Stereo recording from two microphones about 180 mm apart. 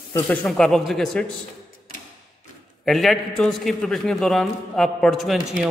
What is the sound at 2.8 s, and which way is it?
A man's voice, centre (ahead or behind).